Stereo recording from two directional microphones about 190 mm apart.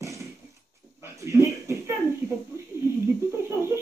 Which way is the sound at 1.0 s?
15° right (ahead or behind).